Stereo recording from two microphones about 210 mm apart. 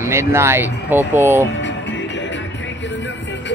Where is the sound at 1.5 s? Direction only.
60° left (ahead or behind).